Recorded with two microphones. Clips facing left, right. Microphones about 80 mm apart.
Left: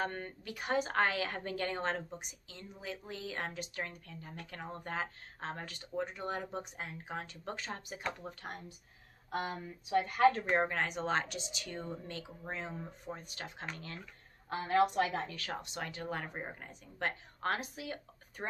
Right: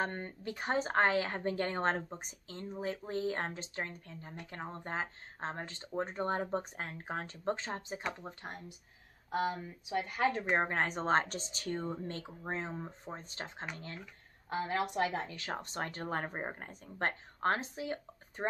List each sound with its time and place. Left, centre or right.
0.0 s a woman's voice: right
10.8 s a woman's voice: right
14.5 s a woman's voice: right
15.6 s a woman's voice: right